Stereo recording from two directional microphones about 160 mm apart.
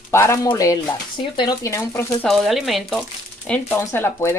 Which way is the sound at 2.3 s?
Centre (ahead or behind).